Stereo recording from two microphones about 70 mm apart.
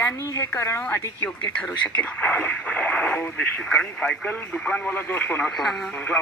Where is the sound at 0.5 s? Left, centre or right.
Left.